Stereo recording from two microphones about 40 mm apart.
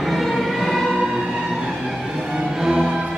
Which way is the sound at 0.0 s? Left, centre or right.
Centre.